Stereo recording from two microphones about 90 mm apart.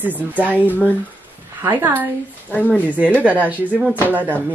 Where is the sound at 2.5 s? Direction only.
20° left (ahead or behind).